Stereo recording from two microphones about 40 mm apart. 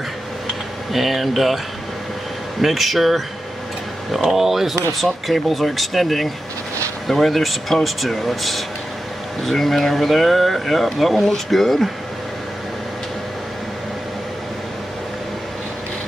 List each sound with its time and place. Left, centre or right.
0.9 s speech: centre
2.6 s speech: centre